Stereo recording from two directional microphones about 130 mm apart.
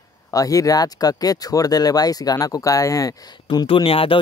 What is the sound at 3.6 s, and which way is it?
Speech, 45° left (ahead or behind).